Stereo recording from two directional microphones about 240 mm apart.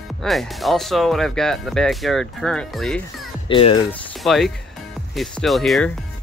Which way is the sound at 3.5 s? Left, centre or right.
Left.